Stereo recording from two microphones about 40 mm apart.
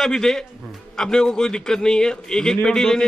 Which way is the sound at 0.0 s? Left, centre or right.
Centre.